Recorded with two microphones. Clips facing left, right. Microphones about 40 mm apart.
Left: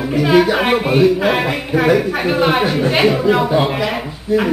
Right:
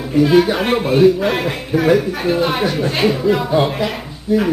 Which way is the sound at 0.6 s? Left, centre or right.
Centre.